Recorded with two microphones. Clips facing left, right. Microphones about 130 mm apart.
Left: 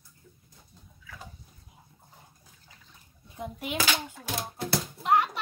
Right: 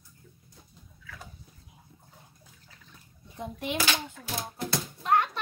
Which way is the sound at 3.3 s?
5° left (ahead or behind).